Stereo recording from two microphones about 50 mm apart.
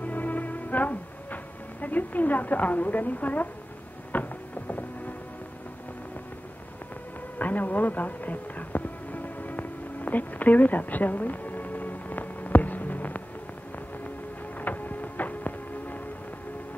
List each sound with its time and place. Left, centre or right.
0.0 s music: left
7.3 s music: left
14.6 s music: left